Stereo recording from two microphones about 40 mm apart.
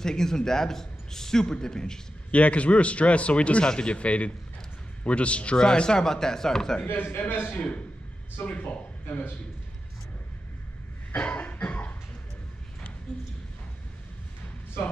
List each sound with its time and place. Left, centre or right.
0.0 s a man's voice: centre
2.3 s a man's voice: left; by 6.8 s centre
6.9 s a man's voice: left
8.5 s a man's voice: left
11.2 s cough: left